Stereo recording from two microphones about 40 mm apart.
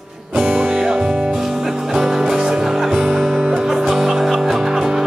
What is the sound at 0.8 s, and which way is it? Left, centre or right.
Speech, centre.